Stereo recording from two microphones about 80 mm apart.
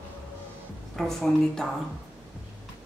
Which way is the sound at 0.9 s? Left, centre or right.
Centre.